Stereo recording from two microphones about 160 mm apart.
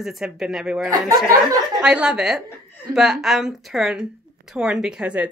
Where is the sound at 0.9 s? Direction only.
20° right (ahead or behind).